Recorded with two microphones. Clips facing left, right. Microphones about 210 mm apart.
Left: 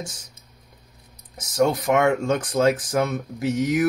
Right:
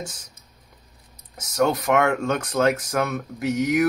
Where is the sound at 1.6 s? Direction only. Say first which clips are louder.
Left 1 dB; 25° left (ahead or behind).